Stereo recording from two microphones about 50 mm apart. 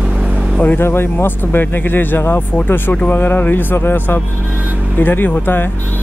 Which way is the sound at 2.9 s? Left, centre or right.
Left.